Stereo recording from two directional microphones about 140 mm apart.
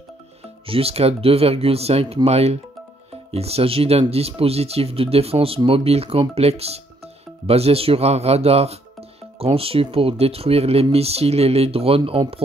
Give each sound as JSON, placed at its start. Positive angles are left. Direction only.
{"t": 0.7, "sound": "speech", "side_deg": -45}